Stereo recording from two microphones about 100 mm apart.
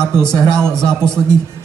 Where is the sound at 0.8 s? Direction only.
5° left (ahead or behind).